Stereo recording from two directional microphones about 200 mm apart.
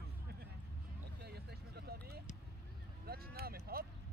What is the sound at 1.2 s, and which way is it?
Vehicle, 55° right (ahead or behind).